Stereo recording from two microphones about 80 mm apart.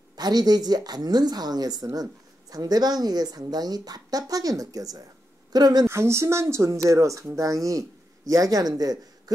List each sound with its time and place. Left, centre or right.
0.1 s a woman's voice: right
5.9 s speech: right